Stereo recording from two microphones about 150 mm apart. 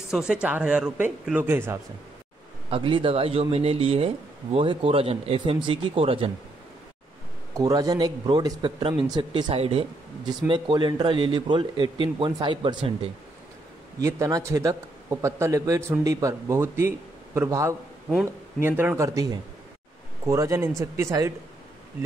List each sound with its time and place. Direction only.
0.1 s speech: 5° right (ahead or behind)
2.7 s speech: 35° right (ahead or behind)
7.5 s a man's voice: 25° right (ahead or behind)
13.9 s a man's voice: 20° right (ahead or behind)